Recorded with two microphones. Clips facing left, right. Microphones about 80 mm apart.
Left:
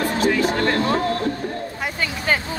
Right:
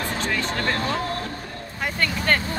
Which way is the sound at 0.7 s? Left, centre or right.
Left.